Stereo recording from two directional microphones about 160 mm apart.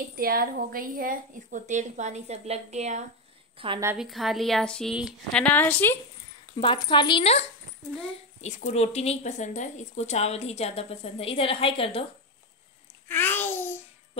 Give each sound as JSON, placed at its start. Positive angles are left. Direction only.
{"t": 0.1, "sound": "a woman's voice", "side_deg": -65}
{"t": 3.5, "sound": "a woman's voice", "side_deg": -35}
{"t": 4.0, "sound": "a woman's voice", "side_deg": 0}
{"t": 6.6, "sound": "speech", "side_deg": 30}
{"t": 13.1, "sound": "a sound", "side_deg": 10}